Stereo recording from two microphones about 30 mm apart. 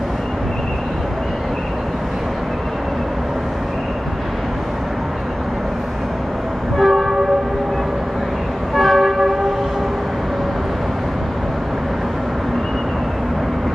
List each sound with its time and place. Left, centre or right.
6.8 s train: centre
8.7 s train: centre